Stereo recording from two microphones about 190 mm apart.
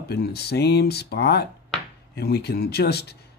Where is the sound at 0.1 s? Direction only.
60° left (ahead or behind).